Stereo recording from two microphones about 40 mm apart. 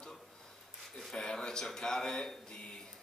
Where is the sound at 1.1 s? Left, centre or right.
Centre.